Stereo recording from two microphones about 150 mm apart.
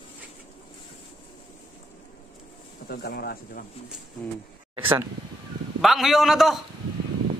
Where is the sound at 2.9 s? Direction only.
90° left.